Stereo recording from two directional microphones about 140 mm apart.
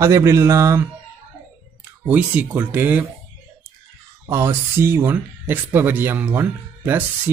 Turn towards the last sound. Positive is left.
turn(degrees=-15)  # may be behind; listen again after turning